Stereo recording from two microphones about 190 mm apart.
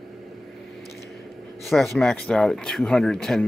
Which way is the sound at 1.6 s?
Centre (ahead or behind).